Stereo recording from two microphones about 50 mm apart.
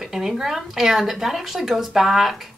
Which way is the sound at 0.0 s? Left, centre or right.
Centre.